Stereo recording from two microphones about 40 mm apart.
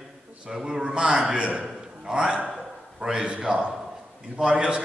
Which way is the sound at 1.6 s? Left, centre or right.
Right.